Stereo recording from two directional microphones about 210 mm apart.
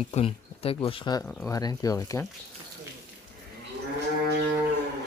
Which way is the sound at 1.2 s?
5° left (ahead or behind).